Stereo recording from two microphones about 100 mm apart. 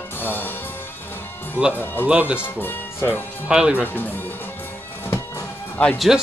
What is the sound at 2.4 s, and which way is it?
Speech, 20° left (ahead or behind).